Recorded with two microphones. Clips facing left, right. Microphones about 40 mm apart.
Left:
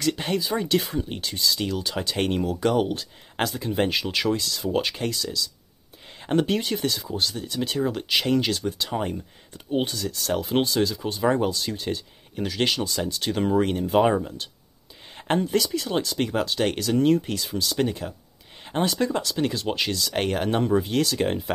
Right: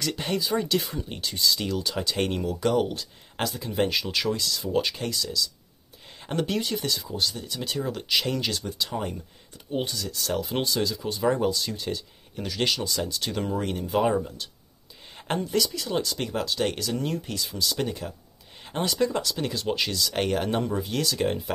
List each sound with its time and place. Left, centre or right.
0.0 s speech: centre
13.3 s speech: left